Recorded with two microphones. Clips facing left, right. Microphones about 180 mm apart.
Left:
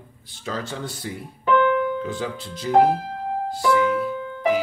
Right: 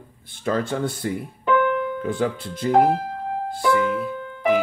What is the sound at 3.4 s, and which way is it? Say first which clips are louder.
Music: even; 55° right (ahead or behind).